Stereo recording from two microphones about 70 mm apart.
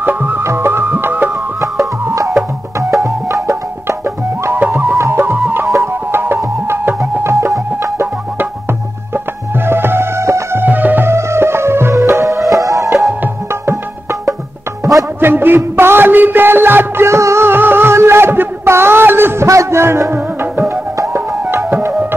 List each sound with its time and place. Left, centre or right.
0.0 s music: right
2.2 s music: centre
4.6 s music: right
4.9 s music: right
7.2 s music: right
9.7 s music: right
10.6 s music: right
15.1 s music: right
19.4 s music: right